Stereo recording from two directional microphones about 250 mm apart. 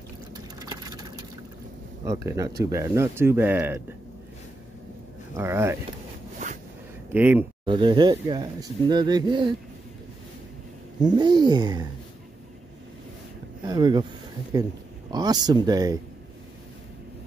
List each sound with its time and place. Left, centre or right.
0.6 s vehicle: centre
2.0 s speech: centre
5.3 s speech: centre
7.1 s speech: centre
7.6 s speech: centre
11.0 s speech: centre
13.7 s speech: centre